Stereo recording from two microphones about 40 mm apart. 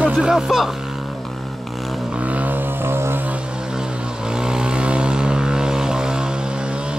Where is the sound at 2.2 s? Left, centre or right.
Right.